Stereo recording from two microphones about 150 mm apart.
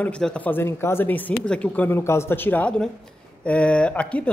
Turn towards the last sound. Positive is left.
turn(degrees=10)  # may be behind; listen again after turning